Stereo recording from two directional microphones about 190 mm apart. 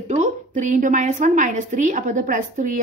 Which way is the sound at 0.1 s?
40° right (ahead or behind).